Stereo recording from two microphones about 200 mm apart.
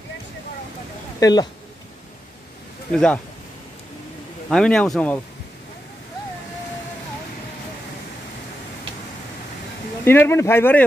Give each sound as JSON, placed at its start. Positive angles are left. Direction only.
{"t": 1.2, "sound": "speech", "side_deg": 20}
{"t": 2.9, "sound": "speech", "side_deg": 5}
{"t": 4.5, "sound": "speech", "side_deg": 5}
{"t": 10.0, "sound": "speech", "side_deg": 10}